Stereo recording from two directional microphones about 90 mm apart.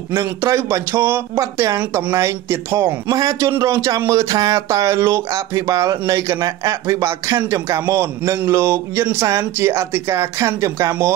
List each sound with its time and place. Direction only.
0.1 s speech: 35° right (ahead or behind)
1.4 s speech: 35° right (ahead or behind)
1.8 s speech: 20° right (ahead or behind)
2.1 s speech: 35° right (ahead or behind)
3.2 s speech: 40° right (ahead or behind)